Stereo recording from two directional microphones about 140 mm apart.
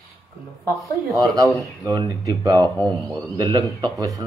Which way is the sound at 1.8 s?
25° right (ahead or behind).